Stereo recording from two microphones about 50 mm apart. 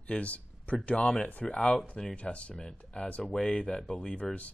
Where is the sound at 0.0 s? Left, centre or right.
Left.